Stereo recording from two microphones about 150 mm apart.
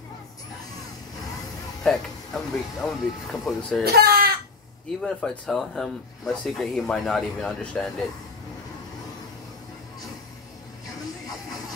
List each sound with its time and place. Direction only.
1.8 s speech: centre (ahead or behind)
3.8 s speech: 90° right
5.0 s speech: 5° left (ahead or behind)